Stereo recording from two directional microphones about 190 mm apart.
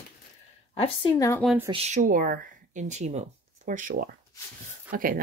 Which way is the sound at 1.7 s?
35° right (ahead or behind).